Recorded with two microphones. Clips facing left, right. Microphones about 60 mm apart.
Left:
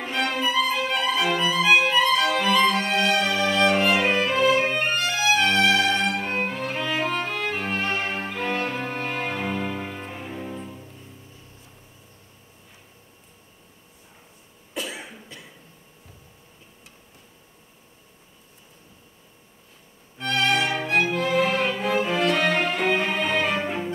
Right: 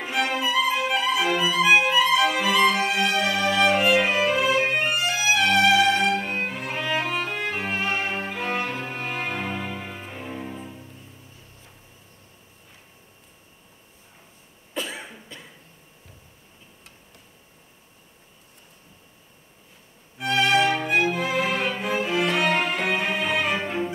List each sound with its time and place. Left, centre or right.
0.0 s violin: centre
8.8 s music: centre
14.8 s cough: right
20.2 s violin: centre
22.3 s music: centre